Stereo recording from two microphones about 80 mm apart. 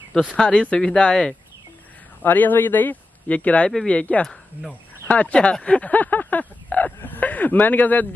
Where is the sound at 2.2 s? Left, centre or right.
Left.